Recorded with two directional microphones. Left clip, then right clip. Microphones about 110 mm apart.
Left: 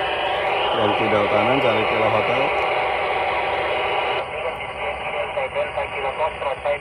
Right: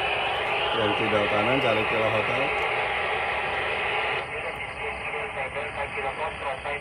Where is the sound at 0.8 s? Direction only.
35° left (ahead or behind).